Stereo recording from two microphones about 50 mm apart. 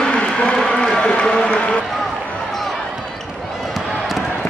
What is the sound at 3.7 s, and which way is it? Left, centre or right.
Basketball bounce, centre.